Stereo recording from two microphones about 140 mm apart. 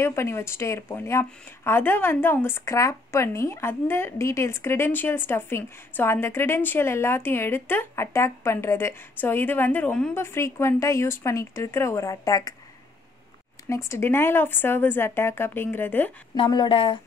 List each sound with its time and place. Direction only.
0.0 s speech: 20° left (ahead or behind)
10.1 s speech: 20° left (ahead or behind)
13.7 s speech: 20° left (ahead or behind)
16.3 s speech: 35° left (ahead or behind)